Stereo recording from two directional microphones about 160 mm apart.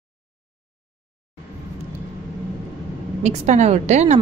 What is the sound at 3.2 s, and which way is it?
Speech, 45° right (ahead or behind).